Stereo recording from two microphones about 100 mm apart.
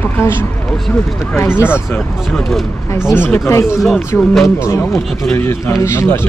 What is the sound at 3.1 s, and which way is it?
Speech, 20° left (ahead or behind).